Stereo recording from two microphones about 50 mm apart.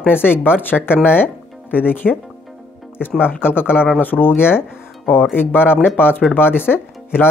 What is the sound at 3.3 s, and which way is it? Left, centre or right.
Speech, left.